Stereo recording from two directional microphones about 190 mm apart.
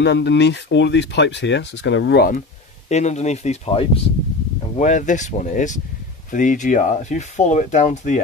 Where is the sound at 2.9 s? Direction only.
35° left (ahead or behind).